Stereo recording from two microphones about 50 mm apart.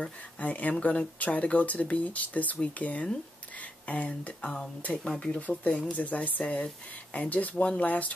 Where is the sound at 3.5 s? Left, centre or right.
Left.